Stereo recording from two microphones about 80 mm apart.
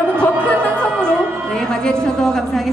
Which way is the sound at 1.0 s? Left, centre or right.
Centre.